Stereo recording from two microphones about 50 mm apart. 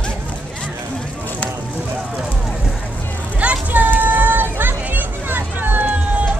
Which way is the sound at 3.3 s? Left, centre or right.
Right.